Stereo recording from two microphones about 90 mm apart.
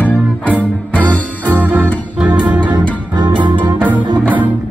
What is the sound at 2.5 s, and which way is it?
Music, 55° right (ahead or behind).